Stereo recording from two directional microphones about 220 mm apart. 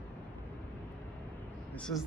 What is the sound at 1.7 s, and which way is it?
Speech, 5° left (ahead or behind).